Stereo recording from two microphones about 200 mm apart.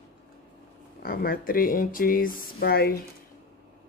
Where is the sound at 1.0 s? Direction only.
50° left (ahead or behind).